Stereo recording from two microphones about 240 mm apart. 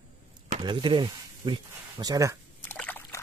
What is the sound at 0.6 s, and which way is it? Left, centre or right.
Speech, centre.